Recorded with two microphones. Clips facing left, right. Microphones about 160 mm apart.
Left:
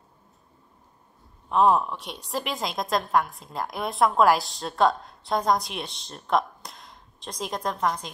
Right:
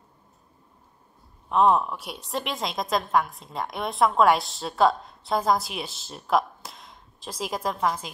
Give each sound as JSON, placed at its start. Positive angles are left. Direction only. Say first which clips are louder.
{"t": 1.5, "sound": "a woman's voice", "louder": "even", "side_deg": 0}